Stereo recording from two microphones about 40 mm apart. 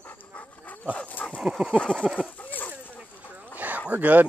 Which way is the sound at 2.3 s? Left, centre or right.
Left.